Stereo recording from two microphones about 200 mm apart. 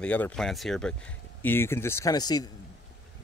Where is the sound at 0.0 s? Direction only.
5° left (ahead or behind).